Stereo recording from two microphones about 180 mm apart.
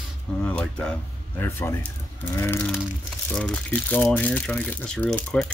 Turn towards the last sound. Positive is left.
turn(degrees=5)  # may be behind; listen again after turning